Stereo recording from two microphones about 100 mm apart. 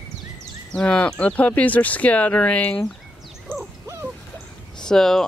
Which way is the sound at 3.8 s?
30° right (ahead or behind).